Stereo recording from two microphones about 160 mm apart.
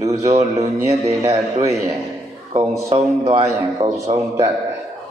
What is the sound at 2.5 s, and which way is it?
A man's voice, 30° right (ahead or behind).